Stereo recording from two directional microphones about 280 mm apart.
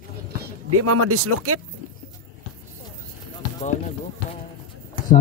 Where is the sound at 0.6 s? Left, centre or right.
Right.